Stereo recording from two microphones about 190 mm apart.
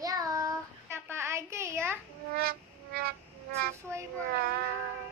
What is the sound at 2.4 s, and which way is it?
Music, 55° right (ahead or behind).